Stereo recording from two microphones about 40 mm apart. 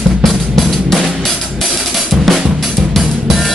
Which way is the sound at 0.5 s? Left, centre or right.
Centre.